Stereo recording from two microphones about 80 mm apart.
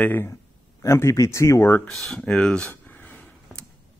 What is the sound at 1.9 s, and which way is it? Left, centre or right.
Speech, centre.